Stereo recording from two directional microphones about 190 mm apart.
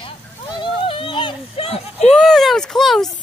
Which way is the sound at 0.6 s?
30° left (ahead or behind).